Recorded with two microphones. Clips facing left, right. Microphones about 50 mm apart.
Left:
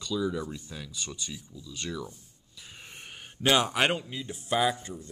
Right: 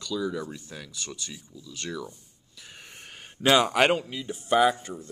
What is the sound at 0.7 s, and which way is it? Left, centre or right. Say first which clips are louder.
Speech: right 1 dB; centre.